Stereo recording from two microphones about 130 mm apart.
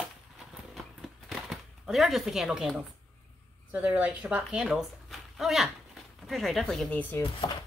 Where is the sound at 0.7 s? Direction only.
Centre (ahead or behind).